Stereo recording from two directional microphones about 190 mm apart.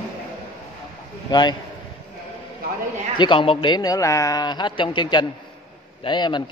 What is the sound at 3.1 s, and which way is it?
A man's voice, 25° left (ahead or behind).